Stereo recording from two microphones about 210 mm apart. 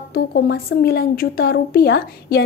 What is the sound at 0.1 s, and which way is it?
A woman's voice, 50° left (ahead or behind).